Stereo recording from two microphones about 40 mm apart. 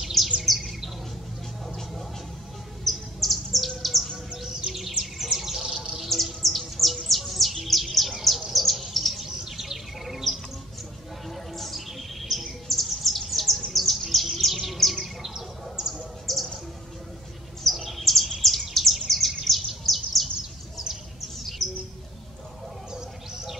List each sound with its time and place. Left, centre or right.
0.0 s chirp: centre
0.4 s bird: centre
2.8 s bird: centre
4.3 s bird: centre
5.0 s bird: centre
6.0 s bird: centre
15.2 s bird: centre
15.9 s bird: centre
17.6 s bird: centre
21.6 s bird: centre
22.9 s bird: centre